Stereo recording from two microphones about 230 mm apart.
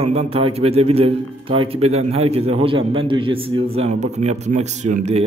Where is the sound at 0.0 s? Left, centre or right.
Right.